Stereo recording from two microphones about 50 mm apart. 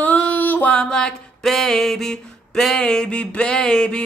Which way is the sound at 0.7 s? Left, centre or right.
Centre.